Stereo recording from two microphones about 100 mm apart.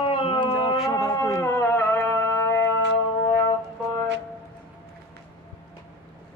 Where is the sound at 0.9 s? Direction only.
35° left (ahead or behind).